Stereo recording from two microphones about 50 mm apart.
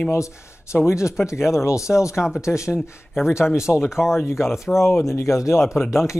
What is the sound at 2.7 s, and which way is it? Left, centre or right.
Speech, left.